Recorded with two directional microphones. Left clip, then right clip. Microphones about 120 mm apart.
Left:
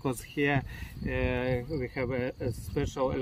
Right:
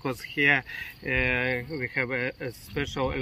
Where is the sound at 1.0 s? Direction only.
20° left (ahead or behind).